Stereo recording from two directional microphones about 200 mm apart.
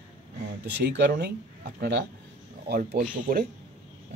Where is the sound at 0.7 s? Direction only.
55° right (ahead or behind).